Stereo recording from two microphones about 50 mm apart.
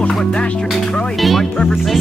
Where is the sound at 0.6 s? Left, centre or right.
Centre.